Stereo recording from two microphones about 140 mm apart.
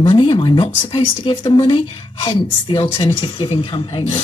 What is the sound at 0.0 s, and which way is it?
A man's voice, 40° left (ahead or behind).